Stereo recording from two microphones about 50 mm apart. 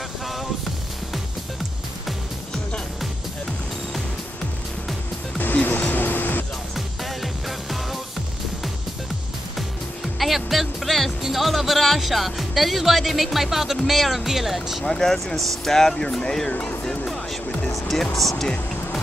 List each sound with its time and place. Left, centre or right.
5.4 s music: left
6.7 s music: centre
10.1 s music: centre
13.8 s speech: centre
14.9 s speech: centre
16.8 s music: centre
17.9 s speech: centre